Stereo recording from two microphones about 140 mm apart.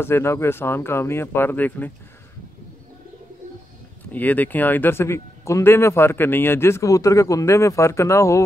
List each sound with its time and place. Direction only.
0.0 s speech: 20° left (ahead or behind)
4.1 s speech: 10° left (ahead or behind)